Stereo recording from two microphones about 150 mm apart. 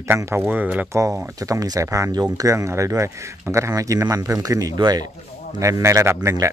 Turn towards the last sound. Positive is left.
turn(degrees=-20)  # may be behind; listen again after turning